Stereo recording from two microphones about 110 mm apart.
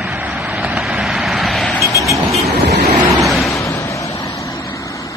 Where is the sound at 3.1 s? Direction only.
Centre (ahead or behind).